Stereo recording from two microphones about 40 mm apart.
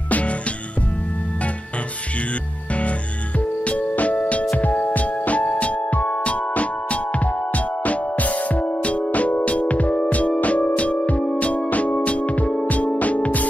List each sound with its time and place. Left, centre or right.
0.1 s music: left
3.3 s music: left